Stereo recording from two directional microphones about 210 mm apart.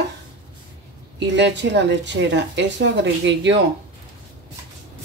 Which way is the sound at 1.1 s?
55° right (ahead or behind).